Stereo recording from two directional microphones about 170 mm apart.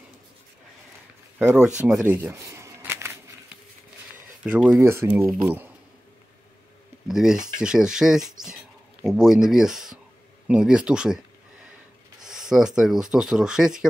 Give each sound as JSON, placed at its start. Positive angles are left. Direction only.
{"t": 1.4, "sound": "speech", "side_deg": -10}
{"t": 1.9, "sound": "shuffling cards", "side_deg": -10}
{"t": 4.5, "sound": "speech", "side_deg": 0}
{"t": 4.7, "sound": "speech", "side_deg": -15}
{"t": 7.1, "sound": "speech", "side_deg": -5}
{"t": 12.3, "sound": "speech", "side_deg": -5}